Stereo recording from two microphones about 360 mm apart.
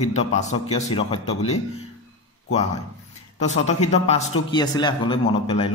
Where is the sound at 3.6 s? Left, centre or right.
Centre.